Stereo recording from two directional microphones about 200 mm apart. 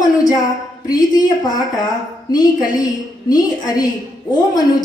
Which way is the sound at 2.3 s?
20° left (ahead or behind).